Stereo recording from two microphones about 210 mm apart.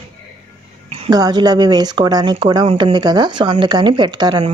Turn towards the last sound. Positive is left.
turn(degrees=-20)  # may be behind; listen again after turning